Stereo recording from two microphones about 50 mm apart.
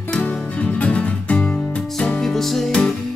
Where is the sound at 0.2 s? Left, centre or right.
Left.